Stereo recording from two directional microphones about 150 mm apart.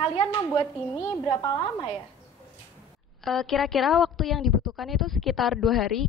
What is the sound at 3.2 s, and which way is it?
A woman's voice, centre (ahead or behind).